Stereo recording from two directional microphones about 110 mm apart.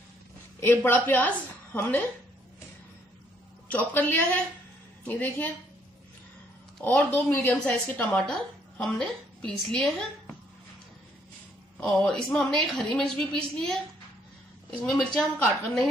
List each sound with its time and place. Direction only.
0.6 s a woman's voice: 20° left (ahead or behind)
3.7 s a woman's voice: 15° left (ahead or behind)
7.1 s a woman's voice: 15° left (ahead or behind)
8.1 s a woman's voice: 5° left (ahead or behind)
11.8 s a woman's voice: 5° left (ahead or behind)
14.9 s a woman's voice: centre (ahead or behind)